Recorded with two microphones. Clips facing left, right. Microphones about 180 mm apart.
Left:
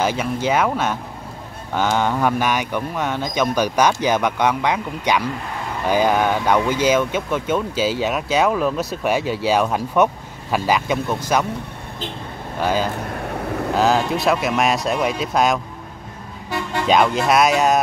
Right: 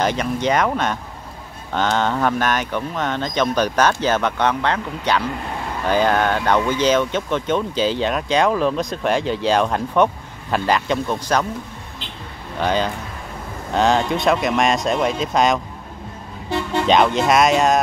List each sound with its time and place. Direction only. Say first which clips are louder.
0.0 s speech: right 1 dB; 5° left (ahead or behind)
12.6 s speech: even; 5° left (ahead or behind)
13.1 s boat: left 8 dB; 65° left (ahead or behind)
13.7 s speech: right 1 dB; 5° left (ahead or behind)
16.8 s speech: even; 5° left (ahead or behind)